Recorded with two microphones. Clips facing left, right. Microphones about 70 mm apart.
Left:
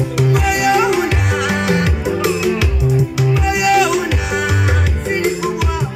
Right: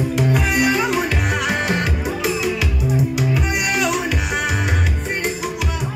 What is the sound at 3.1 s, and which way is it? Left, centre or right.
Music, left.